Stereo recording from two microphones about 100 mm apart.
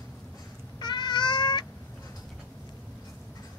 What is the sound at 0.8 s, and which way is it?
Cat, 50° left (ahead or behind).